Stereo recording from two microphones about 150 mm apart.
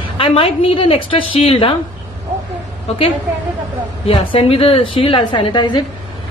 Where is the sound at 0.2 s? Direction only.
40° left (ahead or behind).